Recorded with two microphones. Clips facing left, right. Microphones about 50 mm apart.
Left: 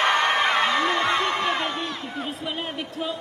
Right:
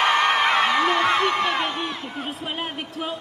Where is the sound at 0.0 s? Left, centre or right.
Right.